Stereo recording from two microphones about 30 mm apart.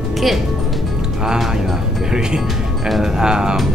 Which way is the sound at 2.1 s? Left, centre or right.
Right.